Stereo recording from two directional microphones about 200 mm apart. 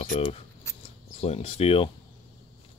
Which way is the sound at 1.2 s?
30° left (ahead or behind).